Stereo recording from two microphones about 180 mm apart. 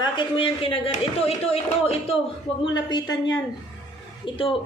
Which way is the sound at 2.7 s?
25° left (ahead or behind).